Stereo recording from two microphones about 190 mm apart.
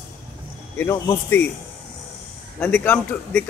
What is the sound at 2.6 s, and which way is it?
Speech, 10° left (ahead or behind).